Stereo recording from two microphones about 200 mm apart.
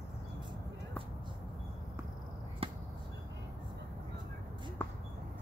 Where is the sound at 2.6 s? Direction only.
25° right (ahead or behind).